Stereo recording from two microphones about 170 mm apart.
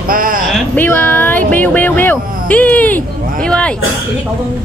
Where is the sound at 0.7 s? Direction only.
10° left (ahead or behind).